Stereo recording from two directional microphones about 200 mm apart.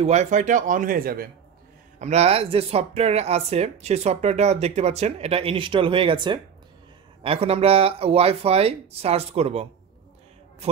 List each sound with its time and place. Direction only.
0.0 s speech: 35° right (ahead or behind)
2.0 s speech: 35° right (ahead or behind)